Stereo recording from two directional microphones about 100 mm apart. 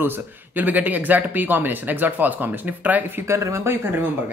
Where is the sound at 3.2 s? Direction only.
30° right (ahead or behind).